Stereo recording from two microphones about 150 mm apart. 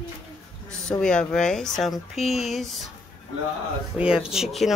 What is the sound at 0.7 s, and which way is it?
Speech, 5° left (ahead or behind).